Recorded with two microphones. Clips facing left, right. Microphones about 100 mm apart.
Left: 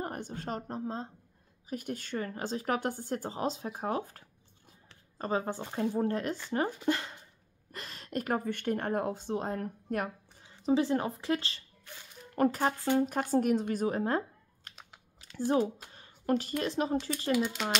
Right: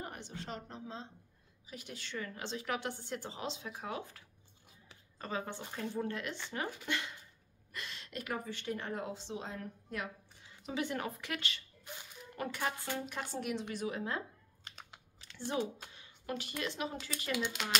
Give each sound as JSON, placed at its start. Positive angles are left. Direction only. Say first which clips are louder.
{"t": 0.0, "sound": "a woman's voice", "louder": "left 7 dB", "side_deg": 45}
{"t": 5.2, "sound": "a woman's voice", "louder": "left 8 dB", "side_deg": 35}
{"t": 10.6, "sound": "speech", "louder": "left 10 dB", "side_deg": 30}
{"t": 11.9, "sound": "speech", "louder": "right 2 dB", "side_deg": -20}
{"t": 12.4, "sound": "a woman's voice", "louder": "left 10 dB", "side_deg": 40}
{"t": 15.1, "sound": "a sound", "louder": "left 8 dB", "side_deg": 40}
{"t": 15.9, "sound": "speech", "louder": "left 11 dB", "side_deg": 40}